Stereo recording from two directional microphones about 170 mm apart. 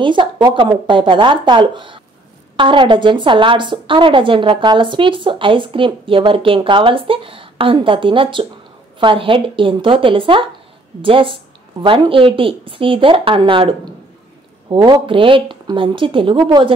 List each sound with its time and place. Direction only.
0.0 s a woman's voice: 30° right (ahead or behind)